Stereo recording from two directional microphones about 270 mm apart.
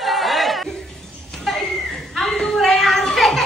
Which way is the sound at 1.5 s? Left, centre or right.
Centre.